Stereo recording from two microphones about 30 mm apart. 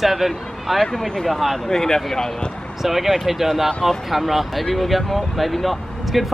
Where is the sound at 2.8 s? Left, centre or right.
Centre.